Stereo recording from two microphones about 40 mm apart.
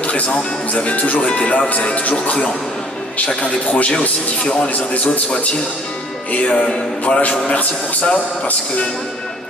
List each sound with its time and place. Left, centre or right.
0.0 s speech: left
3.6 s speech: left
4.7 s speech: left
6.3 s speech: left